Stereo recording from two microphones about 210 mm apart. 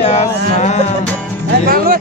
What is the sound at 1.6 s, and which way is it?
Speech, 45° right (ahead or behind).